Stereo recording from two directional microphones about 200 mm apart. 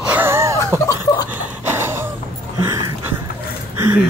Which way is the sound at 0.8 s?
20° left (ahead or behind).